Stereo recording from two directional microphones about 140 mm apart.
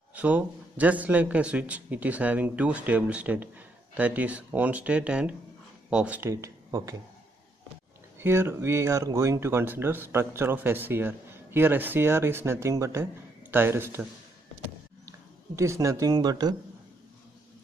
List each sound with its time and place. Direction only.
0.1 s speech: 10° right (ahead or behind)
6.3 s speech: 20° right (ahead or behind)
8.2 s speech: 15° right (ahead or behind)
15.0 s speech: 20° right (ahead or behind)